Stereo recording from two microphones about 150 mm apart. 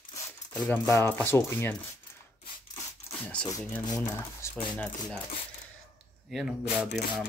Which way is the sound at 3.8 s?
25° left (ahead or behind).